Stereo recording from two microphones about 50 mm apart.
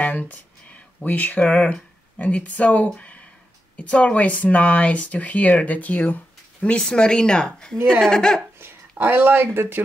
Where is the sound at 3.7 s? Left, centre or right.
Left.